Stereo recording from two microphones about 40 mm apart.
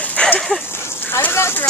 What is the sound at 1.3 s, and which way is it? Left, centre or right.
Speech, left.